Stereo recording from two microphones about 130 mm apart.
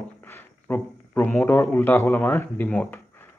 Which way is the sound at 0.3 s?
15° left (ahead or behind).